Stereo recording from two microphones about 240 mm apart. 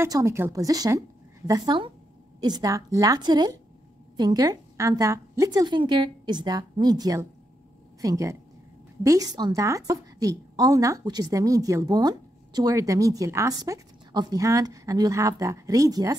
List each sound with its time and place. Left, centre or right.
0.0 s a woman's voice: centre